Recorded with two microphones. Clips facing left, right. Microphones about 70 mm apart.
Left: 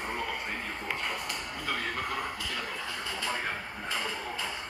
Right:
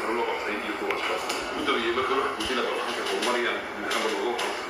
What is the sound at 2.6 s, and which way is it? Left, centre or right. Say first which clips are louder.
Speech: right 9 dB; right.